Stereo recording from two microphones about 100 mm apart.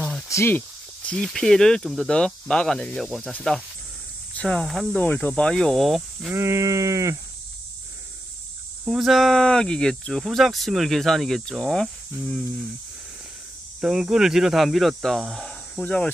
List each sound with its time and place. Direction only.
0.3 s snake: 25° left (ahead or behind)
1.1 s speech: 5° left (ahead or behind)
4.4 s speech: 10° left (ahead or behind)
4.9 s speech: 15° left (ahead or behind)
6.3 s sheep: 30° right (ahead or behind)
8.8 s speech: 5° right (ahead or behind)
13.7 s speech: 5° right (ahead or behind)
15.8 s speech: 15° left (ahead or behind)